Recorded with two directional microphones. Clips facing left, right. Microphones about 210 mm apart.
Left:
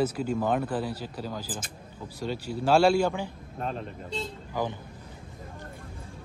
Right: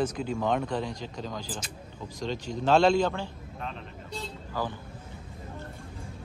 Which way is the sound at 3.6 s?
45° left (ahead or behind).